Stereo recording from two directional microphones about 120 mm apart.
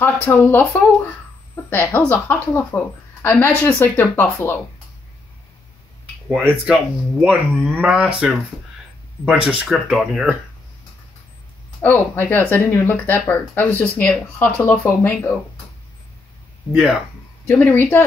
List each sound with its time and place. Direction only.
0.0 s speech: 15° left (ahead or behind)
6.6 s speech: 5° right (ahead or behind)
11.8 s speech: 15° left (ahead or behind)
17.5 s speech: 15° left (ahead or behind)